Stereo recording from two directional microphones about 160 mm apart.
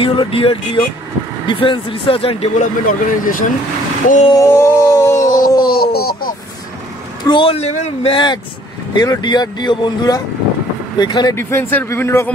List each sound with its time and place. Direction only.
0.0 s a man's voice: 35° left (ahead or behind)
2.6 s speech: 60° left (ahead or behind)
4.3 s a sound: 20° left (ahead or behind)
5.6 s a sound: 70° left (ahead or behind)
7.2 s a man's voice: 35° left (ahead or behind)
11.3 s a man's voice: 15° left (ahead or behind)